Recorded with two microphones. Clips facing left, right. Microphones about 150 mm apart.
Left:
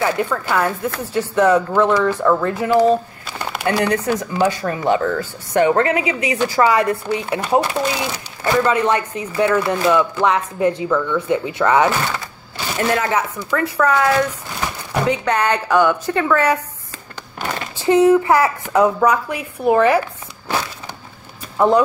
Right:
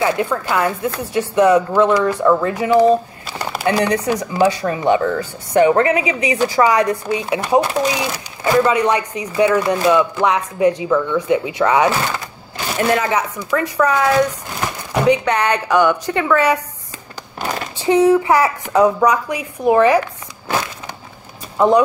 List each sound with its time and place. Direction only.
0.0 s speech: 15° right (ahead or behind)
13.0 s speech: 15° right (ahead or behind)
17.4 s speech: 15° right (ahead or behind)
21.5 s speech: 15° right (ahead or behind)